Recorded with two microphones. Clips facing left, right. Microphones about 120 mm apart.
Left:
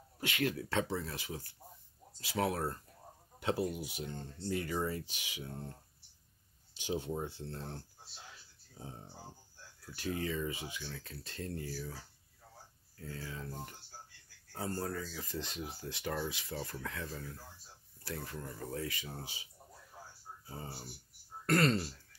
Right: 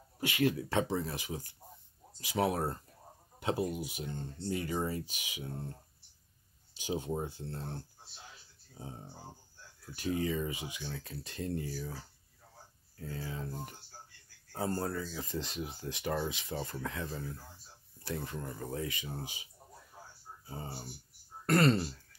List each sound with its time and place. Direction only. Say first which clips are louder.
0.2 s speech: right 4 dB; 20° right (ahead or behind)
6.8 s speech: right 2 dB; 15° right (ahead or behind)
13.0 s speech: right 4 dB; 20° right (ahead or behind)
20.4 s speech: right 3 dB; 20° right (ahead or behind)